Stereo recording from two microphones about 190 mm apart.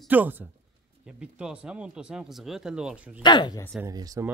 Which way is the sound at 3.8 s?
20° right (ahead or behind).